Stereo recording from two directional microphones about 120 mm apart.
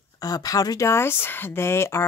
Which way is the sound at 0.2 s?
30° left (ahead or behind).